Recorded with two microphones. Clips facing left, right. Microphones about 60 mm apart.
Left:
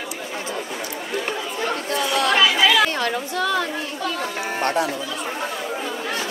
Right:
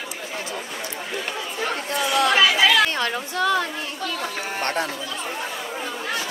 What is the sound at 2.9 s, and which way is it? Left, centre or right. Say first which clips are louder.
Speech: left 2 dB; right.